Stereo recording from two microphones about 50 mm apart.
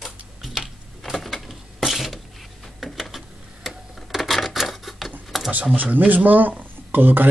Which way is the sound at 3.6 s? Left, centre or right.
Centre.